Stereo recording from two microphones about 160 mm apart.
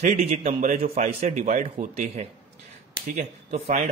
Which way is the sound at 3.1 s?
50° right (ahead or behind).